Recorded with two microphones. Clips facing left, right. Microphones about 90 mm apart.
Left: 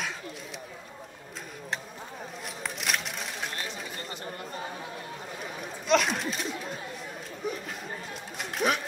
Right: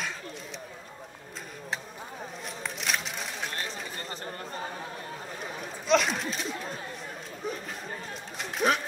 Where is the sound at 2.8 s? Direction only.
Centre (ahead or behind).